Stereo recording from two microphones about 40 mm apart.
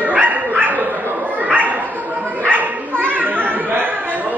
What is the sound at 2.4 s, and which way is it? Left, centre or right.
Bow-wow, right.